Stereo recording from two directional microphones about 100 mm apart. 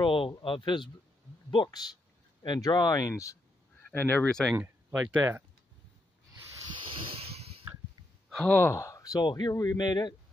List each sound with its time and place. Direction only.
0.0 s a sound: 60° left (ahead or behind)
0.4 s speech: 55° left (ahead or behind); by 3.1 s 40° left (ahead or behind)
3.9 s speech: 20° left (ahead or behind)
4.3 s speech: 5° left (ahead or behind)
4.6 s speech: 15° right (ahead or behind)
7.1 s a sound: 80° right
8.5 s speech: 20° left (ahead or behind); by 10.1 s 45° left (ahead or behind)